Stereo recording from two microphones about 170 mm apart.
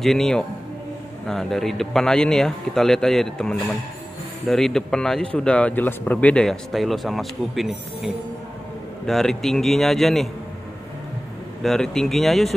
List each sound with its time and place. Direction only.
0.0 s a man's voice: centre (ahead or behind)
11.6 s a man's voice: 5° left (ahead or behind)